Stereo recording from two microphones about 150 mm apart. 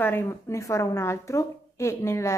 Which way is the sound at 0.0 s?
15° left (ahead or behind).